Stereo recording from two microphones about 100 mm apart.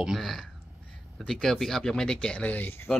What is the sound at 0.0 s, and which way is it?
Speech, centre (ahead or behind).